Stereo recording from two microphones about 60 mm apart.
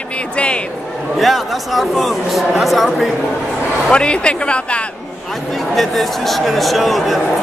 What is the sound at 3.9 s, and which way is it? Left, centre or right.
Speech, centre.